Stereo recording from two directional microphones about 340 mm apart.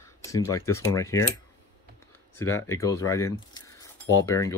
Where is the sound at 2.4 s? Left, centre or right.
Centre.